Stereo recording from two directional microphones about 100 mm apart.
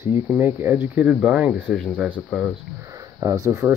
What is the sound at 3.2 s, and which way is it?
Speech, 30° right (ahead or behind).